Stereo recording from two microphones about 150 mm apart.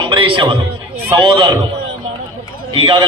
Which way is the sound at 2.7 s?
35° right (ahead or behind).